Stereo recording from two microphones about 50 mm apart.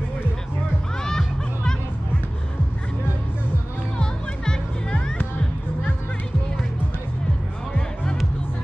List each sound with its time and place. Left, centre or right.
1.0 s music: centre
4.0 s music: centre
7.7 s music: left